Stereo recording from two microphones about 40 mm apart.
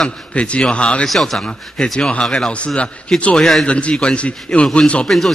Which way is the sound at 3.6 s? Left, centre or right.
Left.